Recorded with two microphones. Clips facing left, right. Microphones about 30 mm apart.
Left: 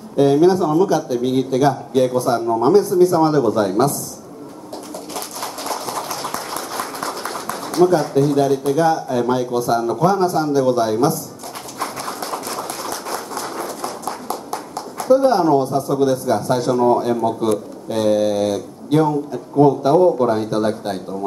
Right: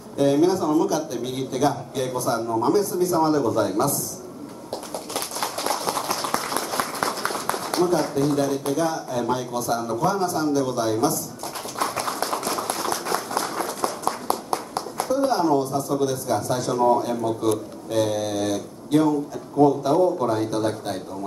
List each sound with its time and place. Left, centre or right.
0.2 s a man's voice: left
1.5 s speech: left
7.9 s speech: left
9.1 s a man's voice: left
15.0 s speech: left